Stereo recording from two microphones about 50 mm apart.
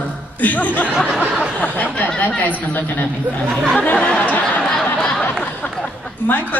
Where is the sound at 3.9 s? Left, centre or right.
Left.